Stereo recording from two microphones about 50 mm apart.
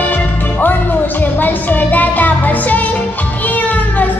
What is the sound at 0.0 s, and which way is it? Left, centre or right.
Music, left.